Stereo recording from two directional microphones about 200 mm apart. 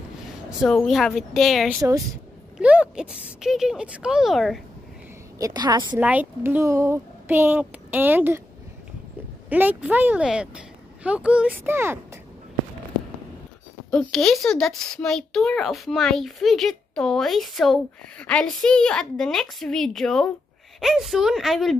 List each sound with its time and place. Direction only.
0.5 s speech: centre (ahead or behind)
5.4 s a woman's voice: 20° right (ahead or behind)
5.9 s speech: 10° right (ahead or behind)
9.5 s speech: 10° right (ahead or behind)
13.8 s speech: 5° left (ahead or behind)